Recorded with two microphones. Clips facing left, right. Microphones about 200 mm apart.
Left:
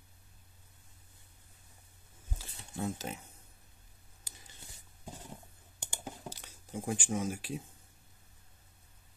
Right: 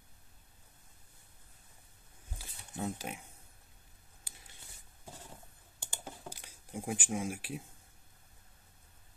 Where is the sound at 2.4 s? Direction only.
10° right (ahead or behind).